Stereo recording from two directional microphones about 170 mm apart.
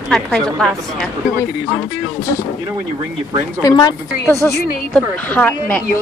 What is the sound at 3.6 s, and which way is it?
A woman's voice, 20° left (ahead or behind).